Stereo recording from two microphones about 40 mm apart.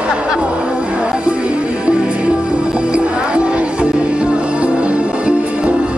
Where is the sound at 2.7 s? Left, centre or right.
Right.